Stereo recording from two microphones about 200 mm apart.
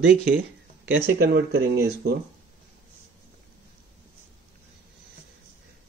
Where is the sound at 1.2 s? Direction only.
55° right (ahead or behind).